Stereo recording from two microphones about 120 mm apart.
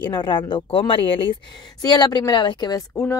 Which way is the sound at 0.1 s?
40° left (ahead or behind).